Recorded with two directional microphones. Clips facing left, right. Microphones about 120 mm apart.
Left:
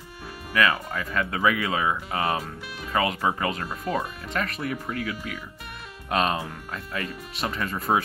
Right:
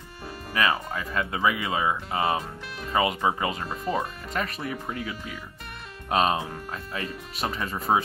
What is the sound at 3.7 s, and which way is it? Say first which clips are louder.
Speech: even; centre (ahead or behind).